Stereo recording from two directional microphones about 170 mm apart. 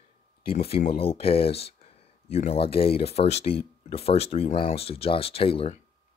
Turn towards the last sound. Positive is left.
turn(degrees=35)  # may be behind; listen again after turning